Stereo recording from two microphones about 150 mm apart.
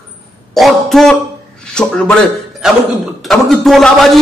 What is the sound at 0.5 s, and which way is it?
A man's voice, centre (ahead or behind).